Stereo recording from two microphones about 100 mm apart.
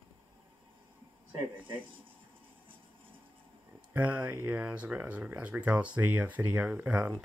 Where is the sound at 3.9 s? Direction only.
15° right (ahead or behind).